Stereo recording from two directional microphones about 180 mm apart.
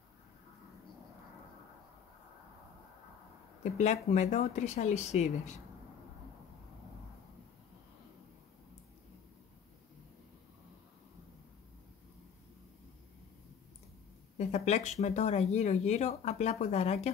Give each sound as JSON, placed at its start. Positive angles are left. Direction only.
{"t": 3.7, "sound": "speech", "side_deg": 40}
{"t": 14.4, "sound": "speech", "side_deg": 40}